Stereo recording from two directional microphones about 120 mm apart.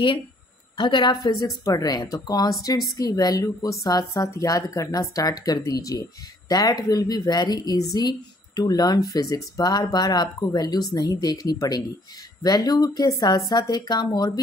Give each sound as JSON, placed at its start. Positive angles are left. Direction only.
{"t": 0.7, "sound": "a woman's voice", "side_deg": 40}